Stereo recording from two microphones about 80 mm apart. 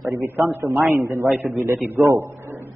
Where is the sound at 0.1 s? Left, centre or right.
Right.